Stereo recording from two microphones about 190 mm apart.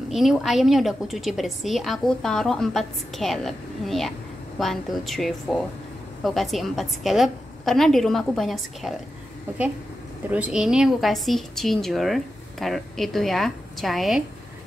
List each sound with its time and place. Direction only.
0.1 s a woman's voice: centre (ahead or behind)
10.3 s a woman's voice: 5° right (ahead or behind)